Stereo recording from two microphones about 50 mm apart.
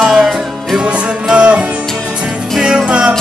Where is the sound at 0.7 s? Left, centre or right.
Right.